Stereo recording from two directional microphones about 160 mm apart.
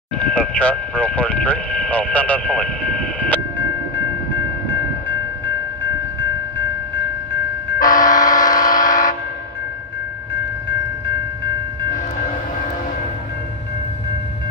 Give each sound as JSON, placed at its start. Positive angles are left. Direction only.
{"t": 0.2, "sound": "speech", "side_deg": 10}
{"t": 7.8, "sound": "vehicle", "side_deg": 55}
{"t": 8.7, "sound": "vehicle horn", "side_deg": 55}